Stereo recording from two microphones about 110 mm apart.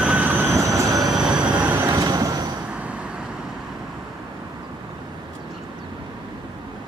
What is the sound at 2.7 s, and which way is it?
Vehicle, 10° right (ahead or behind).